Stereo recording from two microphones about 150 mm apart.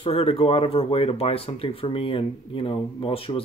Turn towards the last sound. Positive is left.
turn(degrees=40)  # may be behind; listen again after turning